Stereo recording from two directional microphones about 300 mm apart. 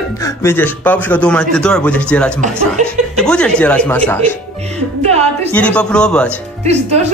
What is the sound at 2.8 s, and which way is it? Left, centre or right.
Speech, right.